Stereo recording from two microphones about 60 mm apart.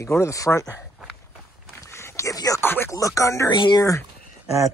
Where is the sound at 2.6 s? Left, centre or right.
Left.